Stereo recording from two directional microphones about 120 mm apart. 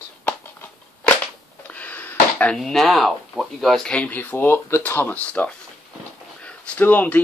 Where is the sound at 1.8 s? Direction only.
15° left (ahead or behind).